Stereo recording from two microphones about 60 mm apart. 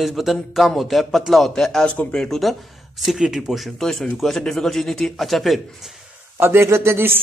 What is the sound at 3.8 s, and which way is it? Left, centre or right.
Speech, centre.